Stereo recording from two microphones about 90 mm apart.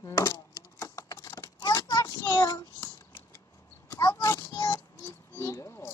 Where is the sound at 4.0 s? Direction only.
45° left (ahead or behind).